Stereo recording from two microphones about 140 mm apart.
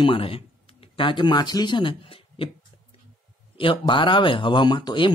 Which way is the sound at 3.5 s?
35° left (ahead or behind).